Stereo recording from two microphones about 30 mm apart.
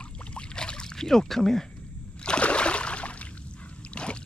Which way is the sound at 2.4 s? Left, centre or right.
Left.